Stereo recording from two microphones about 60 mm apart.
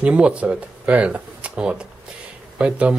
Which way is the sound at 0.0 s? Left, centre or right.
Right.